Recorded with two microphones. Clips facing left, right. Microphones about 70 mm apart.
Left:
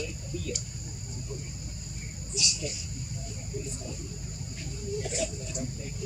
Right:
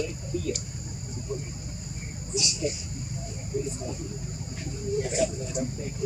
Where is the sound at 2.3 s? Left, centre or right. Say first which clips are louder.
Right 6 dB; right.